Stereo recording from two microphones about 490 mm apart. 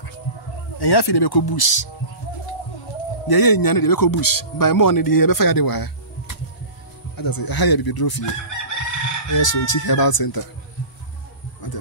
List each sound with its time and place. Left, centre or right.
0.7 s speech: left
3.3 s speech: left
11.6 s a sound: left